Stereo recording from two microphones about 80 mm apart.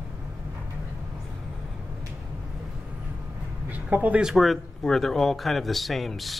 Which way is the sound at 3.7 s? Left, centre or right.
Centre.